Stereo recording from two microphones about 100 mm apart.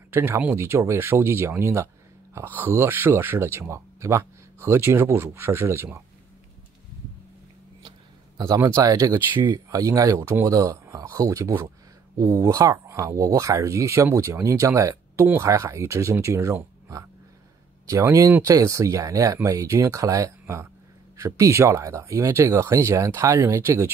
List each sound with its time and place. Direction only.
0.1 s speech: 20° right (ahead or behind)
8.4 s speech: 35° right (ahead or behind)
17.8 s speech: 30° right (ahead or behind)